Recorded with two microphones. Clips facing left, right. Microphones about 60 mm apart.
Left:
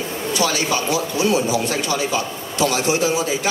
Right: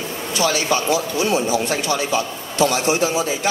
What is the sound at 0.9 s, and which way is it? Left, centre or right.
Speech, right.